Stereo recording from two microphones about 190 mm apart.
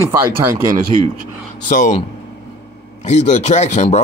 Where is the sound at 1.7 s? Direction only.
40° left (ahead or behind).